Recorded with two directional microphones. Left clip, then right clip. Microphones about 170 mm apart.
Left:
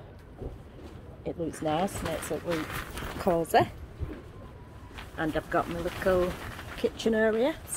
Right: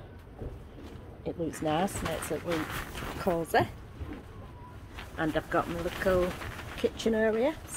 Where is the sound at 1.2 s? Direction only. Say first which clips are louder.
Left 1 dB; centre (ahead or behind).